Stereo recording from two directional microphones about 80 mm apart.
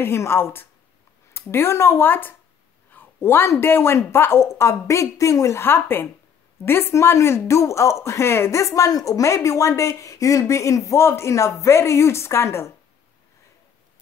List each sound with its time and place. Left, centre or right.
0.0 s a woman's voice: left